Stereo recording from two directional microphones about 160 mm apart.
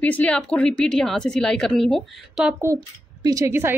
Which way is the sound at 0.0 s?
10° left (ahead or behind).